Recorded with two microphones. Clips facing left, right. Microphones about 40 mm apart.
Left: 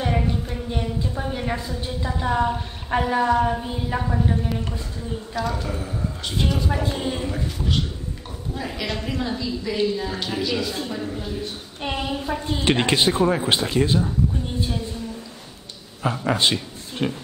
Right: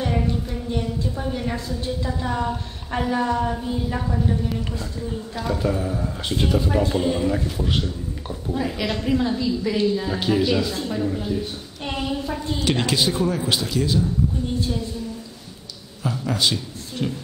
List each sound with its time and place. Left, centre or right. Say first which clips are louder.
0.0 s a woman's voice: even; centre
5.6 s a woman's voice: right 5 dB; centre
6.8 s a woman's voice: right 4 dB; centre
7.2 s a woman's voice: right 3 dB; centre
11.8 s a sound: even; centre
12.5 s a woman's voice: left 2 dB; left
16.0 s a man's voice: left 2 dB; left